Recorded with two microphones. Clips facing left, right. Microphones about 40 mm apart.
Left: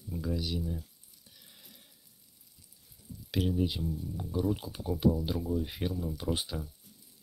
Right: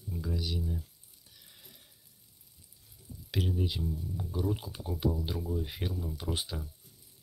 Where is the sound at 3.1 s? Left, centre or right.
Right.